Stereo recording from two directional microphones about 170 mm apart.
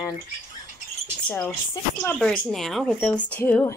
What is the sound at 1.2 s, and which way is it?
Speech, 5° left (ahead or behind).